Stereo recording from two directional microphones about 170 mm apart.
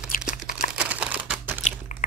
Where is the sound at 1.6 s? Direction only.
45° left (ahead or behind).